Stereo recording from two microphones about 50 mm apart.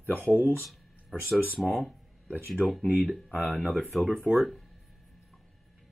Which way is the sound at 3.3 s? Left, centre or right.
Right.